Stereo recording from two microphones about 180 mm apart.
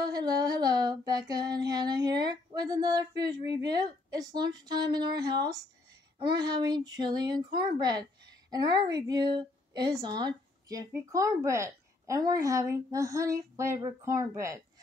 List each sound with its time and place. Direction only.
0.0 s female singing: 20° right (ahead or behind)
2.0 s speech: 20° right (ahead or behind)